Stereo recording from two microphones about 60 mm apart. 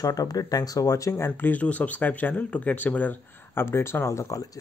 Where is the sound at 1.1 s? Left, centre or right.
Left.